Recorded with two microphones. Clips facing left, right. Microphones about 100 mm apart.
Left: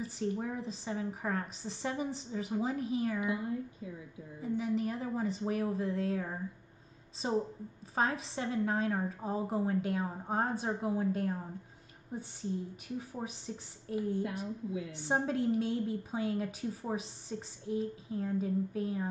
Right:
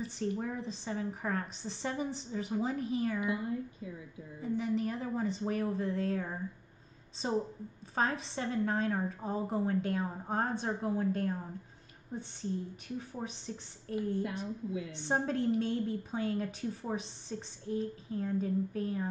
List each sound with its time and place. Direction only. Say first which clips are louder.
0.0 s a woman's voice: even; 5° left (ahead or behind)
3.2 s a woman's voice: even; 20° left (ahead or behind)
4.4 s a woman's voice: even; 5° left (ahead or behind)